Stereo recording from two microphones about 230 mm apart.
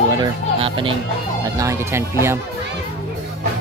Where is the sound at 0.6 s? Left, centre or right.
Right.